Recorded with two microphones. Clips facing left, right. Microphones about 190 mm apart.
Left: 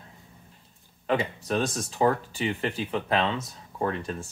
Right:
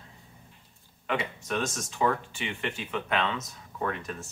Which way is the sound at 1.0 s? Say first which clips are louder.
Left 5 dB; 35° left (ahead or behind).